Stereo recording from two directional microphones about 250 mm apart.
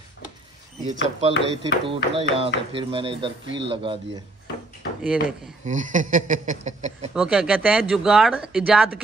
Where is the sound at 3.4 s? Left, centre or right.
Right.